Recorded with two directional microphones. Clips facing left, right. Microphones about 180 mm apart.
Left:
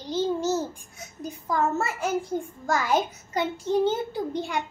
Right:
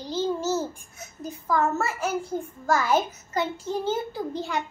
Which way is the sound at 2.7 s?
15° left (ahead or behind).